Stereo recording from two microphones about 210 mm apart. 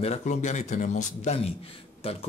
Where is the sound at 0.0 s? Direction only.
30° left (ahead or behind).